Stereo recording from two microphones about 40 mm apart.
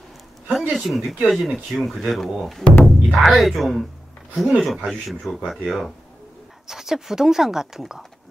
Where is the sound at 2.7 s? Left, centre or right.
Left.